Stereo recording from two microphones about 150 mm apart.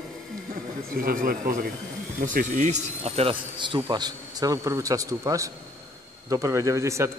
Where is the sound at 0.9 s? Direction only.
70° right (ahead or behind).